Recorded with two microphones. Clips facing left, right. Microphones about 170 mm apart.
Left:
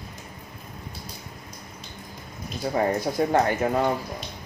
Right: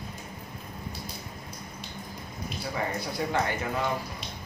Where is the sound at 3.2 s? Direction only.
45° left (ahead or behind).